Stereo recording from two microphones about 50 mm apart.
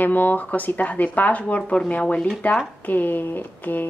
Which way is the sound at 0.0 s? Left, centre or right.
Left.